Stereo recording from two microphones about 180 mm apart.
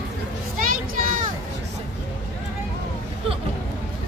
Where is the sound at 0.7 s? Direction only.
50° right (ahead or behind).